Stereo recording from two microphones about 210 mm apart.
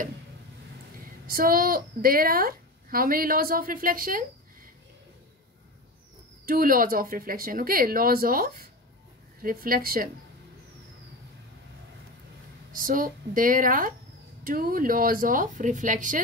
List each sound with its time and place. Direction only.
1.2 s a woman's voice: 45° right (ahead or behind)
6.4 s a woman's voice: 45° right (ahead or behind)
12.7 s speech: 40° right (ahead or behind)